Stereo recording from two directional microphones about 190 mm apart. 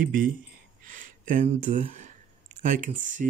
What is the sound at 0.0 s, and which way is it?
Speech, 45° right (ahead or behind).